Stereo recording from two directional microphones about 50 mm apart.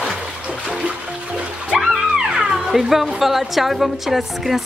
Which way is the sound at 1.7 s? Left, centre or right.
Centre.